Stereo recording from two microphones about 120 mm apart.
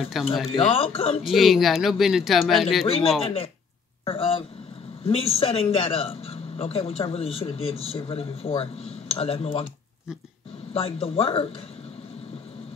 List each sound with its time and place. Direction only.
0.0 s speech: 5° right (ahead or behind)
0.6 s a man's voice: 50° left (ahead or behind)
1.2 s speech: centre (ahead or behind)
2.9 s a man's voice: 50° left (ahead or behind)
10.7 s a man's voice: 50° left (ahead or behind)